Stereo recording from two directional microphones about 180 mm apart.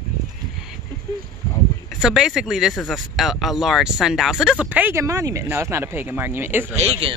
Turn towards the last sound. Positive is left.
turn(degrees=-30)  # may be behind; listen again after turning